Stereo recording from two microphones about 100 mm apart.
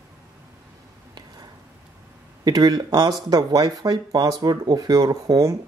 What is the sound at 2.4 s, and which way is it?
Speech, 40° right (ahead or behind).